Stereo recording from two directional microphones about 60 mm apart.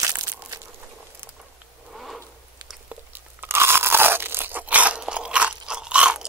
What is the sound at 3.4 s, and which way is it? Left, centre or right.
Crunch, right.